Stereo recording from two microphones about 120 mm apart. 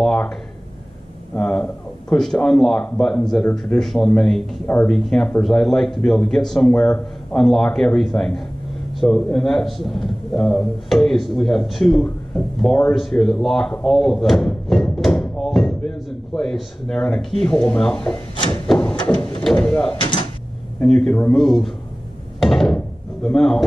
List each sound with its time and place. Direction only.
0.0 s a sound: 5° left (ahead or behind)
1.3 s a man's voice: 5° left (ahead or behind)
13.8 s a sound: centre (ahead or behind)
16.3 s a man's voice: 5° left (ahead or behind)
20.0 s mechanisms: 45° left (ahead or behind)
20.8 s a man's voice: 5° left (ahead or behind)
22.4 s wood: 5° left (ahead or behind)
23.2 s a man's voice: 5° left (ahead or behind)